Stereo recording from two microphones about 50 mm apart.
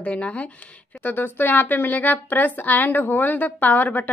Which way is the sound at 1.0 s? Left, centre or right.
Left.